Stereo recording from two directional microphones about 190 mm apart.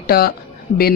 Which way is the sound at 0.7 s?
35° left (ahead or behind).